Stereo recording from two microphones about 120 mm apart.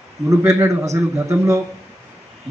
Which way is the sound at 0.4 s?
20° right (ahead or behind).